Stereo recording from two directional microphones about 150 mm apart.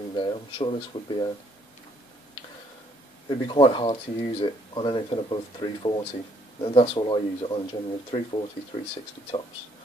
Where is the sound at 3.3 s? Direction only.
30° left (ahead or behind).